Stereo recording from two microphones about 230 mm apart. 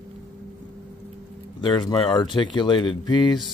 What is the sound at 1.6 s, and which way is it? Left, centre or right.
Speech, centre.